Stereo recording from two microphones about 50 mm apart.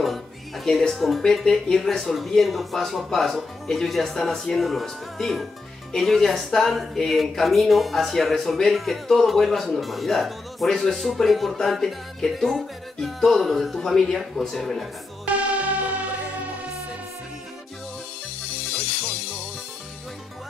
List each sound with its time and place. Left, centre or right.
0.8 s speech: centre
15.2 s music: right